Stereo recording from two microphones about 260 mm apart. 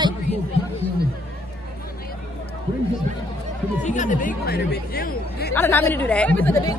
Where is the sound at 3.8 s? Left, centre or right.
Left.